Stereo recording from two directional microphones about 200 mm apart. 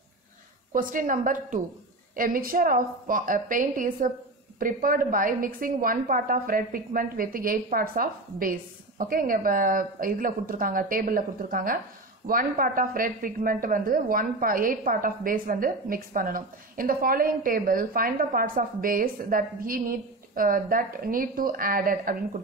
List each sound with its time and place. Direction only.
0.7 s a woman's voice: 40° right (ahead or behind)